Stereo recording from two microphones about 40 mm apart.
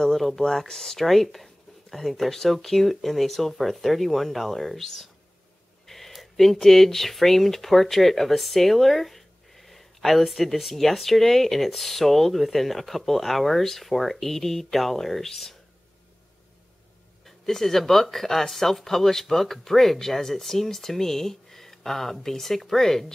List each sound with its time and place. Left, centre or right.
0.0 s speech: centre
17.2 s speech: centre